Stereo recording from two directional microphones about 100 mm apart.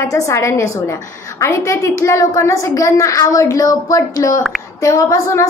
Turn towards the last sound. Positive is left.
turn(degrees=30)  # may be behind; listen again after turning